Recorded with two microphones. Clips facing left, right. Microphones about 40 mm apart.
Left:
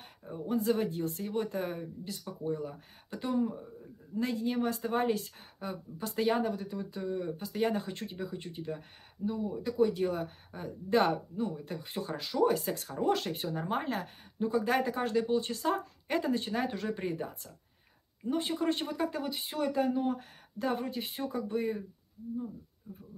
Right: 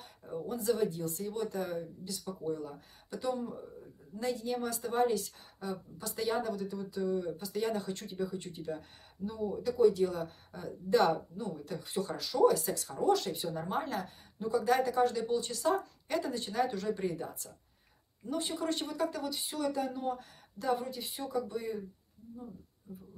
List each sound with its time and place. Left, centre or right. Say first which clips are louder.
0.5 s a woman's voice: left 2 dB; left